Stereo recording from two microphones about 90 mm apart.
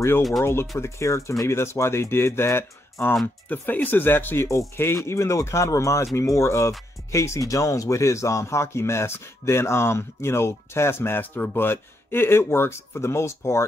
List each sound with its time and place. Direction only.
0.4 s speech: 30° left (ahead or behind)